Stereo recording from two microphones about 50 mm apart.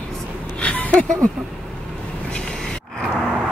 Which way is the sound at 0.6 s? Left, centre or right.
Left.